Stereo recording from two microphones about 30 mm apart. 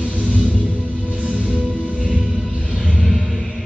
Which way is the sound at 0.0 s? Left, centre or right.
Right.